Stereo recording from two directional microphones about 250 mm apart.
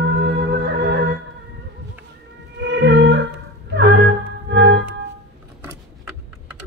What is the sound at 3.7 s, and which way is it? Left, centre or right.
Music, right.